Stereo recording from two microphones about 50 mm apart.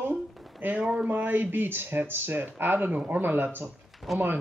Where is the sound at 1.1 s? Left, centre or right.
Right.